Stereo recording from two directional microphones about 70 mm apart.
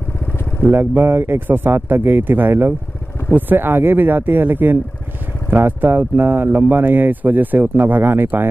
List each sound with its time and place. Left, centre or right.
0.7 s speech: right